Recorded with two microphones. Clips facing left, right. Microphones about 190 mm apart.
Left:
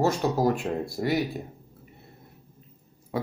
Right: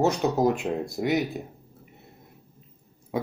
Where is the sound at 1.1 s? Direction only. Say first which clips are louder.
Right 1 dB; centre (ahead or behind).